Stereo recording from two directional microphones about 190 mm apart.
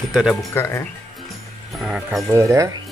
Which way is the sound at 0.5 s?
15° left (ahead or behind).